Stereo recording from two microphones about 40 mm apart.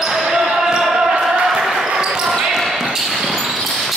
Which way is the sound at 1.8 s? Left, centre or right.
Centre.